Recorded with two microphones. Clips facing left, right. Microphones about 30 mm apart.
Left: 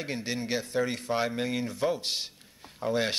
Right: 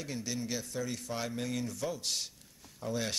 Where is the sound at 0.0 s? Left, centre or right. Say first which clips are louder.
Left 5 dB; left.